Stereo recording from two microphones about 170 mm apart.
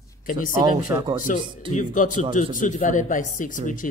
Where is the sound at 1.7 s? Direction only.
50° left (ahead or behind).